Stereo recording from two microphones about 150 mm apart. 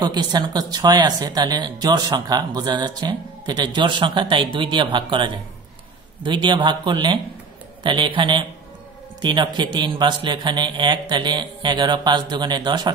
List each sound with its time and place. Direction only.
0.0 s speech: 25° right (ahead or behind)